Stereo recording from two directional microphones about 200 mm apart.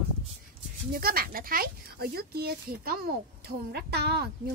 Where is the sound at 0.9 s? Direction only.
45° right (ahead or behind).